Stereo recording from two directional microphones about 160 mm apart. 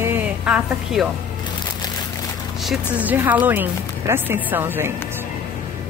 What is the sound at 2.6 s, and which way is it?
Speech, 10° right (ahead or behind).